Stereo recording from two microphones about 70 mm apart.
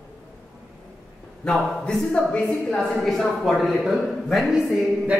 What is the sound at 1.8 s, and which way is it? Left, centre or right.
A woman's voice, centre.